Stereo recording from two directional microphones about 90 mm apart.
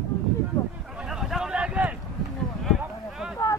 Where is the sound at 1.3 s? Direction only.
10° right (ahead or behind).